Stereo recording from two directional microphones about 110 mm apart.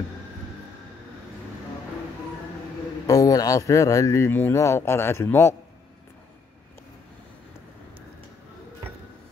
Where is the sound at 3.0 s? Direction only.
30° left (ahead or behind).